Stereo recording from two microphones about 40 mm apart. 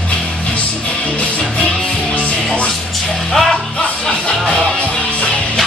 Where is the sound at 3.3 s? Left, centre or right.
Centre.